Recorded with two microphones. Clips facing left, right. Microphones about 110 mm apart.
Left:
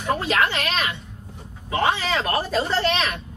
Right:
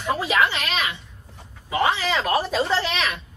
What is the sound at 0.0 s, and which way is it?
Speech, 5° right (ahead or behind).